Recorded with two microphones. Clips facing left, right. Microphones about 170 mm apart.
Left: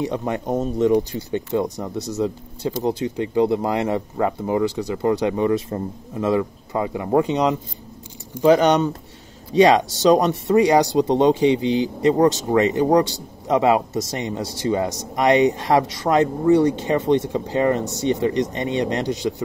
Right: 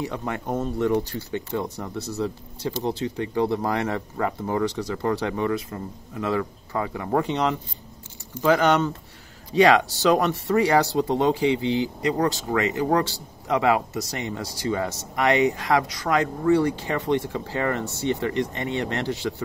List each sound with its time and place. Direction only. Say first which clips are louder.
0.0 s speech: left 5 dB; 20° left (ahead or behind)